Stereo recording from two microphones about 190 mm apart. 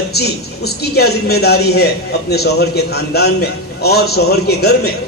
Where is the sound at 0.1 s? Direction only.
55° left (ahead or behind).